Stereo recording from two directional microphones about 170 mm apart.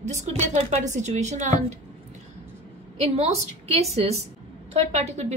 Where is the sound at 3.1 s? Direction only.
35° right (ahead or behind).